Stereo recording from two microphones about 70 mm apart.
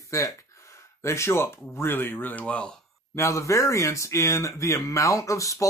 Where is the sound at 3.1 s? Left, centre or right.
Left.